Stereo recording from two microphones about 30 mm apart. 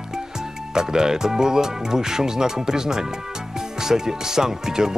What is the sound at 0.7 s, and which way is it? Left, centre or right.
Speech, centre.